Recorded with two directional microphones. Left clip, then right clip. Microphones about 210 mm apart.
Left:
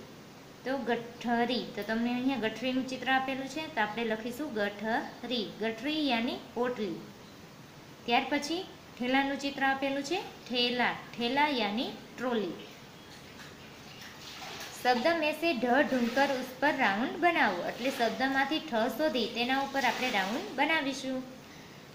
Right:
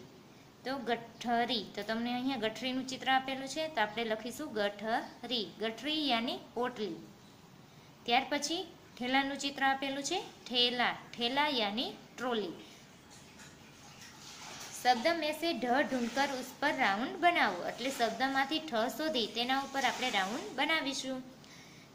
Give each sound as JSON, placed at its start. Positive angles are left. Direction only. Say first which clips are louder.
{"t": 0.7, "sound": "a woman's voice", "louder": "left 4 dB", "side_deg": -10}
{"t": 8.0, "sound": "a woman's voice", "louder": "left 2 dB", "side_deg": -10}
{"t": 14.8, "sound": "a woman's voice", "louder": "left 2 dB", "side_deg": -5}